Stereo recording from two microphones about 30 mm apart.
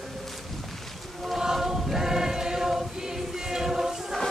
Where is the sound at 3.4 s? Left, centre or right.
Centre.